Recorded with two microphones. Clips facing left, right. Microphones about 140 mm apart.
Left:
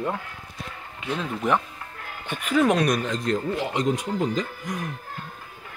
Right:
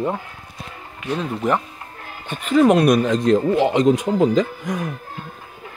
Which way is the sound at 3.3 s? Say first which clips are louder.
Right 9 dB; 90° right.